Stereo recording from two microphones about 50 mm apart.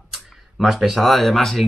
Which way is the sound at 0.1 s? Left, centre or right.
Centre.